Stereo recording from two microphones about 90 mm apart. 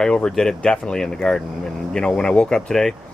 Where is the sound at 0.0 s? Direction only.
5° left (ahead or behind).